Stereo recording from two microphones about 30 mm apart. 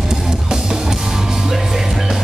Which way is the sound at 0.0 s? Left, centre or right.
Centre.